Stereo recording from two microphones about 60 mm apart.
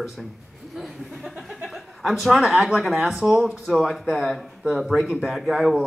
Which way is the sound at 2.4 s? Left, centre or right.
Centre.